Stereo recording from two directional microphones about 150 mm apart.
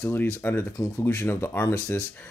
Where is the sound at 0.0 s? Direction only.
15° left (ahead or behind).